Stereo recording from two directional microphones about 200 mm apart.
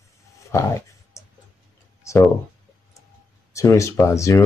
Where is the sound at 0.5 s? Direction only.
15° left (ahead or behind).